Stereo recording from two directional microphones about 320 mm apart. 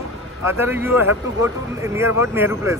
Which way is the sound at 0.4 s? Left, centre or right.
Centre.